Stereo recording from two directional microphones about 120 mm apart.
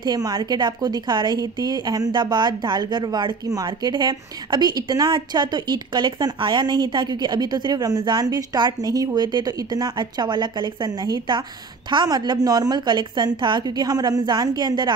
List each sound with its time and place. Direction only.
0.0 s a woman's voice: 35° right (ahead or behind)